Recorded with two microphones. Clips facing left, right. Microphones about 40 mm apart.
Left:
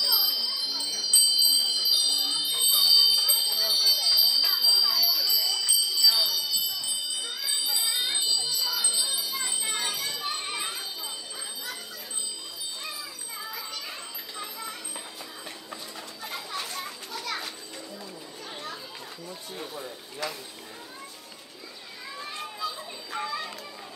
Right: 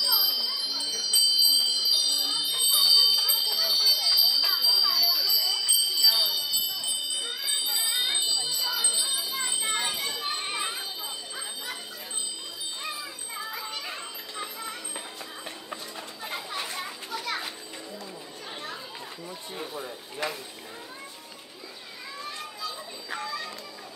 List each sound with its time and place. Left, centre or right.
0.0 s bell: centre
13.5 s children playing: right
14.4 s music: right
16.3 s children playing: centre
19.5 s a sound: centre
23.1 s a sound: left